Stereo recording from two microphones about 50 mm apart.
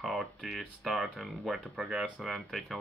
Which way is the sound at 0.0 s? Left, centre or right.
Centre.